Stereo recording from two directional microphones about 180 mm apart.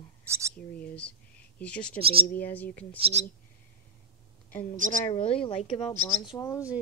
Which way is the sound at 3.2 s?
40° right (ahead or behind).